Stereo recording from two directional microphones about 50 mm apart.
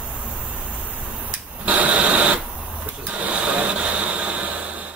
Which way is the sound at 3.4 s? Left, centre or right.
Right.